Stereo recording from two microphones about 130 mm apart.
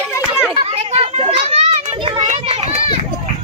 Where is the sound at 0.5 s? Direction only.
50° right (ahead or behind).